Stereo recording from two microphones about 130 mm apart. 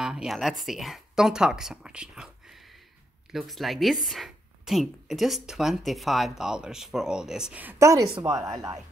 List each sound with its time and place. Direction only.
0.0 s a woman's voice: 5° right (ahead or behind)
7.8 s speech: 25° right (ahead or behind)